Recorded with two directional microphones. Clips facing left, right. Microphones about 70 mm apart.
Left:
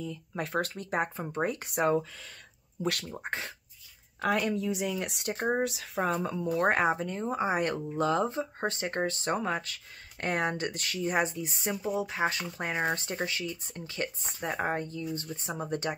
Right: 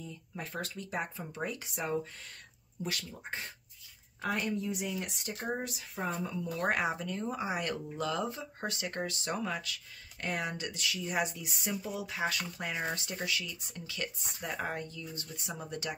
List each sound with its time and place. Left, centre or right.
0.0 s speech: left
6.7 s speech: left